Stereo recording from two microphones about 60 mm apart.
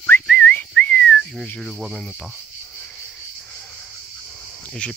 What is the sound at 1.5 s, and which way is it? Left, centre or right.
Speech, centre.